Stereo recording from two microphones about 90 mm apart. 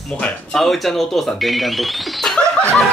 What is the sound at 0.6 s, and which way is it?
Speech, centre (ahead or behind).